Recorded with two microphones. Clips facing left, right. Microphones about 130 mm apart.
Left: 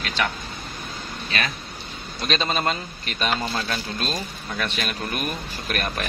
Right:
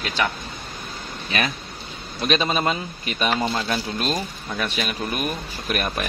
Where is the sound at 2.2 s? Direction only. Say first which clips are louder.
Right 3 dB; 10° right (ahead or behind).